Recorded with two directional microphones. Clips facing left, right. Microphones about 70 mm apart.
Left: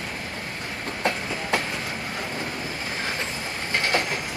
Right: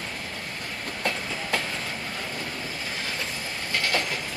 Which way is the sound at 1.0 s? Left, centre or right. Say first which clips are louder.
Left 3 dB; left.